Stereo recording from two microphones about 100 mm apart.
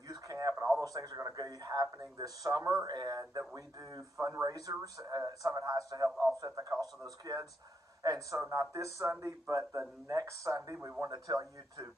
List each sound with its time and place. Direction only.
0.1 s radio: 35° right (ahead or behind)
0.7 s a man's voice: 35° right (ahead or behind)